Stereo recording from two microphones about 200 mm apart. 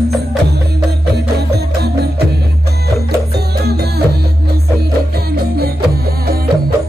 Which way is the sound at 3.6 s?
55° right (ahead or behind).